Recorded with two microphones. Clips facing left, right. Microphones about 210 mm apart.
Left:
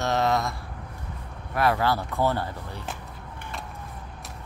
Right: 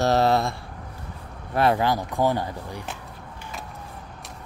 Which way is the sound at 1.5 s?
25° right (ahead or behind).